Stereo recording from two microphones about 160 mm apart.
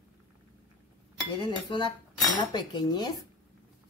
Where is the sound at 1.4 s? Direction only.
30° left (ahead or behind).